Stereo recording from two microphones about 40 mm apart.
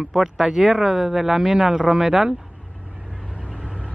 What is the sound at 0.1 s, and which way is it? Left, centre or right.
Speech, centre.